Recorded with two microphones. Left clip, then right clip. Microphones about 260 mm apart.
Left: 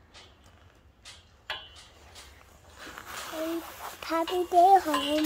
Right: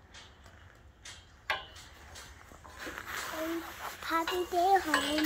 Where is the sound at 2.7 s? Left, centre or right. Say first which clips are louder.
Right 1 dB; left.